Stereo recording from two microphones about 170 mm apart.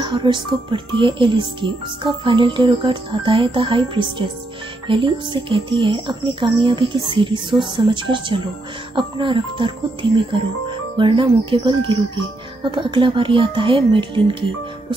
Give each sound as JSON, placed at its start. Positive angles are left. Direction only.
{"t": 0.0, "sound": "speech", "side_deg": -30}